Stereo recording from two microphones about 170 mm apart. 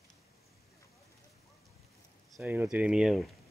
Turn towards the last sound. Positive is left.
turn(degrees=0)  # may be behind; listen again after turning